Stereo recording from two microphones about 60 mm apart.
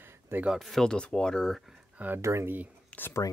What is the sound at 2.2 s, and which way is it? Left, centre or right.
Speech, right.